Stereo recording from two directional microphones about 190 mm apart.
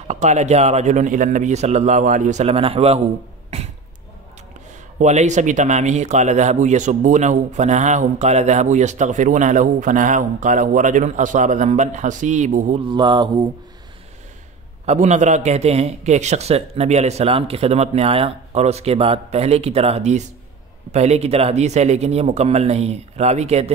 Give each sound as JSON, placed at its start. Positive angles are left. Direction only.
{"t": 0.1, "sound": "speech", "side_deg": -40}
{"t": 3.5, "sound": "a sound", "side_deg": -35}
{"t": 4.9, "sound": "speech", "side_deg": -40}
{"t": 12.8, "sound": "mantra", "side_deg": -25}
{"t": 14.9, "sound": "speech", "side_deg": -35}